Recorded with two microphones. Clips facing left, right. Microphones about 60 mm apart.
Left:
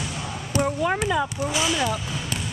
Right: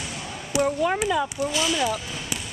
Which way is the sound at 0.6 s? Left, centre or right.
Centre.